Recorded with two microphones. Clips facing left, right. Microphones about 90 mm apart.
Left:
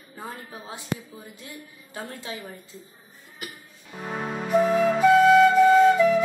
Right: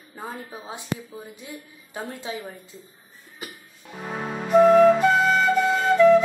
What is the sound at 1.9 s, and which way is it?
Speech, 15° right (ahead or behind).